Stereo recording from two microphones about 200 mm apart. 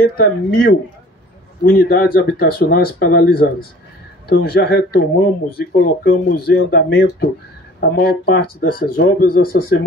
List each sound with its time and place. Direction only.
0.0 s speech: 50° left (ahead or behind)